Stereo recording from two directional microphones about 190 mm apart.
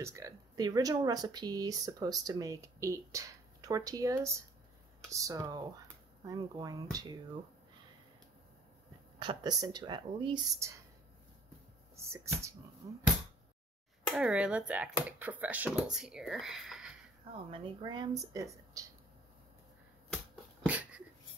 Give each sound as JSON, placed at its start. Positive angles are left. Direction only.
{"t": 0.0, "sound": "speech", "side_deg": -15}
{"t": 9.2, "sound": "speech", "side_deg": -25}
{"t": 11.9, "sound": "speech", "side_deg": -15}
{"t": 14.1, "sound": "speech", "side_deg": -5}
{"t": 17.5, "sound": "speech", "side_deg": -25}
{"t": 20.6, "sound": "dog", "side_deg": -5}